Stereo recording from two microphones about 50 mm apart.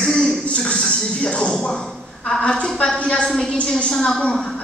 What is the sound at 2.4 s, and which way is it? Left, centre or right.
A woman's voice, centre.